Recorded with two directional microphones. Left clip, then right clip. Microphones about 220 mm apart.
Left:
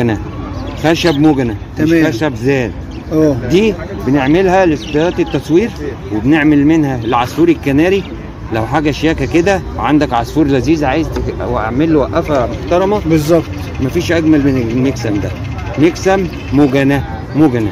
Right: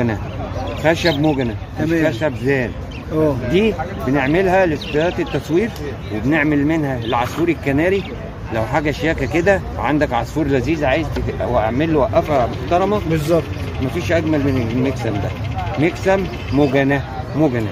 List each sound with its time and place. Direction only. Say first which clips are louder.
0.8 s speech: left 5 dB; 30° left (ahead or behind)
1.8 s speech: left 7 dB; 15° left (ahead or behind)
2.0 s speech: left 4 dB; 30° left (ahead or behind)
13.9 s speech: left 6 dB; 35° left (ahead or behind)